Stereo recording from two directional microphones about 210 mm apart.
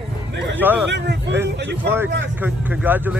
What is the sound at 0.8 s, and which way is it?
Speech, 55° right (ahead or behind).